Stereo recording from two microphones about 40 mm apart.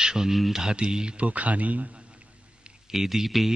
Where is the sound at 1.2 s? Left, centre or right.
Right.